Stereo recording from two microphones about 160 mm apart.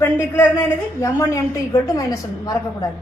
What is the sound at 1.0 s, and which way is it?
A woman's voice, 15° left (ahead or behind).